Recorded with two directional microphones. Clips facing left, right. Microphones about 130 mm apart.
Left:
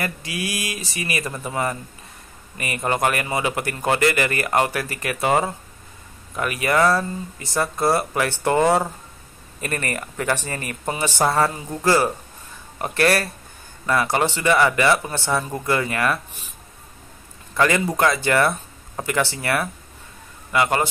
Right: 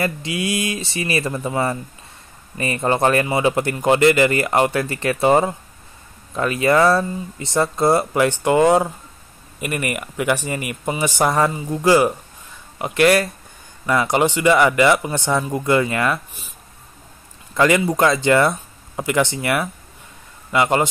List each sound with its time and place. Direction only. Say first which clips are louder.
0.0 s speech: right 5 dB; 25° right (ahead or behind)
17.6 s speech: right 3 dB; 20° right (ahead or behind)